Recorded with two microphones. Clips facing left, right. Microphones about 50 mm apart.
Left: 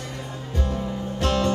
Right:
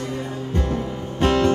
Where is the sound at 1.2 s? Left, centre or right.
Right.